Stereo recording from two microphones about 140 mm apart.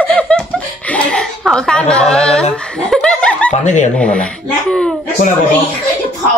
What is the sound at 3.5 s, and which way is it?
Speech, 55° left (ahead or behind).